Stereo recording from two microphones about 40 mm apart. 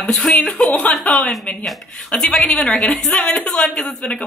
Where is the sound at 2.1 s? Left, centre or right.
Left.